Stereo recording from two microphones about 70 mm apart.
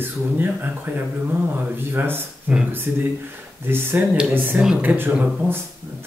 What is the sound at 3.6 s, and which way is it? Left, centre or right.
A man's voice, right.